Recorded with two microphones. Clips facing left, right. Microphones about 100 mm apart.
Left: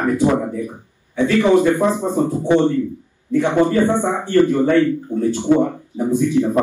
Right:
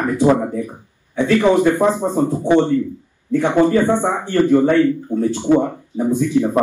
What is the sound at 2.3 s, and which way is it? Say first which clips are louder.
Speech: right 1 dB; 20° right (ahead or behind).